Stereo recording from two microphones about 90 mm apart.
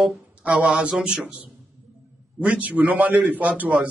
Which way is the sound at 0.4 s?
10° right (ahead or behind).